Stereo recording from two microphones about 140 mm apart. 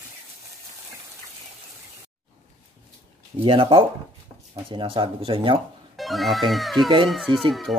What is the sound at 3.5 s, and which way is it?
Speech, 40° right (ahead or behind).